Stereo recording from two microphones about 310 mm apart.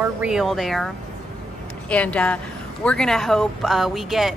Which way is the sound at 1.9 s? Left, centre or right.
Centre.